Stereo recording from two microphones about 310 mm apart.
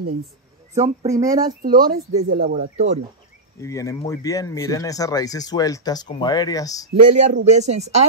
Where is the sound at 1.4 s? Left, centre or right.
Right.